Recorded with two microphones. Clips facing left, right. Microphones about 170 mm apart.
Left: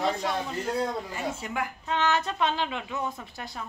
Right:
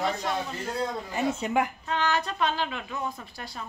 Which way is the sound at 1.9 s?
20° left (ahead or behind).